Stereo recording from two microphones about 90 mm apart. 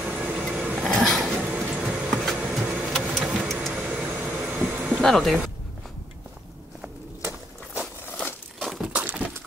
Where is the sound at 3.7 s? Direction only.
10° right (ahead or behind).